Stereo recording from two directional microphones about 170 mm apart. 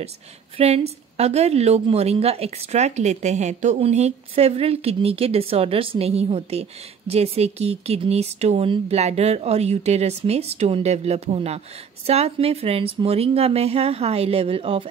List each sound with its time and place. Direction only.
0.6 s a woman's voice: 35° right (ahead or behind)